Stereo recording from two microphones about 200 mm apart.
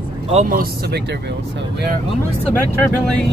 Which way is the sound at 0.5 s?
50° right (ahead or behind).